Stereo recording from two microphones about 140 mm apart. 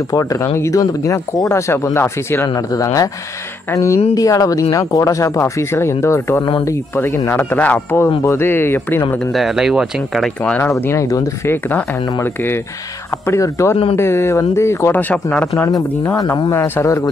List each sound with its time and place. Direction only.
0.1 s speech: 25° left (ahead or behind)
9.3 s speech: centre (ahead or behind)
15.5 s speech: 25° left (ahead or behind)